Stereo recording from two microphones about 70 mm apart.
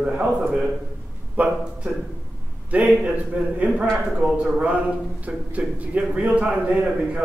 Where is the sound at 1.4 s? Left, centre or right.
Right.